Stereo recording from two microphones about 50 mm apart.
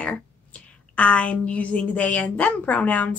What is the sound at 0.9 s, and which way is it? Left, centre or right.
A woman's voice, left.